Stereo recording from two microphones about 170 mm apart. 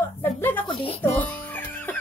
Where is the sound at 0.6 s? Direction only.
30° left (ahead or behind).